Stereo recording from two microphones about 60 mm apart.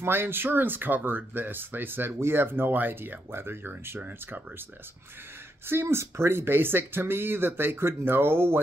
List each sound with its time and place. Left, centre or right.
0.0 s speech: right
5.7 s speech: right